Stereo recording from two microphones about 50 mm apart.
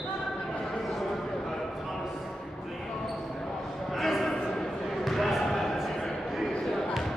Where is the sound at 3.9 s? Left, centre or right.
Centre.